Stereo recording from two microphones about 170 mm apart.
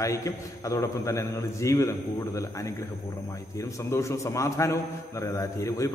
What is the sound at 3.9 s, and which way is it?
A man's voice, 15° left (ahead or behind).